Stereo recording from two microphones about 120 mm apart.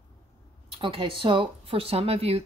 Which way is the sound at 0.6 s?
50° right (ahead or behind).